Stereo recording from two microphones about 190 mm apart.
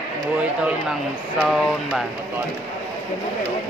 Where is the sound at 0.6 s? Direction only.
5° right (ahead or behind).